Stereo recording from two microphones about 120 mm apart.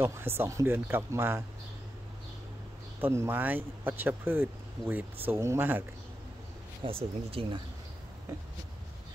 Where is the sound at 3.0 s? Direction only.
20° right (ahead or behind).